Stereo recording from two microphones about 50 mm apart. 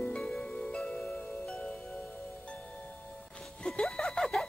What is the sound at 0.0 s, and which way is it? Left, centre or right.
Music, centre.